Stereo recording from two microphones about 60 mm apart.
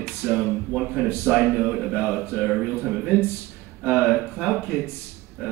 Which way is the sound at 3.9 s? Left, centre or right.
Right.